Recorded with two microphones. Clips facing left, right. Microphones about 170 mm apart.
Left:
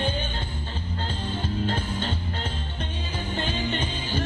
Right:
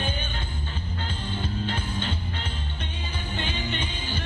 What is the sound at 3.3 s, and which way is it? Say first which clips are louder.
Music: left 3 dB; 40° left (ahead or behind).